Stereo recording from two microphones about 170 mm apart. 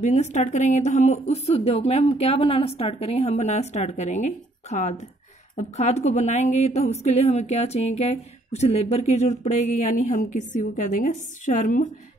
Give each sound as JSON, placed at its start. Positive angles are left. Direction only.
{"t": 0.0, "sound": "a woman's voice", "side_deg": 45}